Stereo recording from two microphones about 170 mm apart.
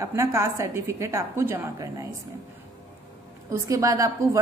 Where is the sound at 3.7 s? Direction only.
20° right (ahead or behind).